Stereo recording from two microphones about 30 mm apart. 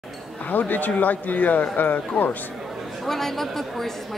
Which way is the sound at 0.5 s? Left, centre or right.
Left.